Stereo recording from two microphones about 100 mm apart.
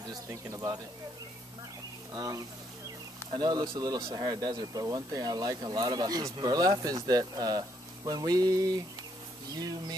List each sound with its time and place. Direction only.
0.0 s speech: 40° right (ahead or behind)
2.1 s speech: 35° right (ahead or behind)